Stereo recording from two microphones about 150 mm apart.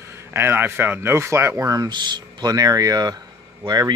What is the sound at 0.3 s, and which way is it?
A man's voice, 15° right (ahead or behind).